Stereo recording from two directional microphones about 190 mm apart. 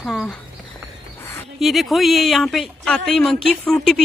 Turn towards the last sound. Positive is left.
turn(degrees=5)  # may be behind; listen again after turning